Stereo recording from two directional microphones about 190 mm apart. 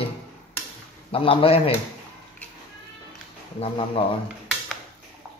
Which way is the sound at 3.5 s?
30° left (ahead or behind).